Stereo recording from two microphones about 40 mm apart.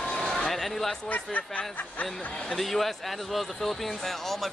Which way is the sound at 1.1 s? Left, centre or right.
Left.